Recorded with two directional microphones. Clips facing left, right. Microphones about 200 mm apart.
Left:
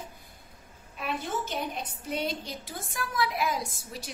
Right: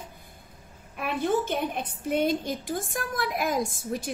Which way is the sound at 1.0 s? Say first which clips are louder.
Right 7 dB; 55° right (ahead or behind).